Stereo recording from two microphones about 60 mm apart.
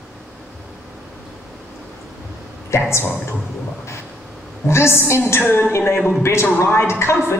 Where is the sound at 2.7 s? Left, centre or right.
Left.